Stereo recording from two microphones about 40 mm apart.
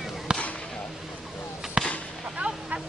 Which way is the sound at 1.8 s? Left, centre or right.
Centre.